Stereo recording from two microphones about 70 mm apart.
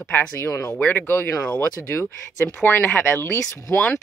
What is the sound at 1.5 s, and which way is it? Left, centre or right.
Speech, left.